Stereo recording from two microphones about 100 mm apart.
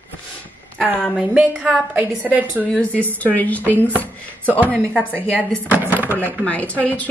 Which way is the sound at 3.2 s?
15° left (ahead or behind).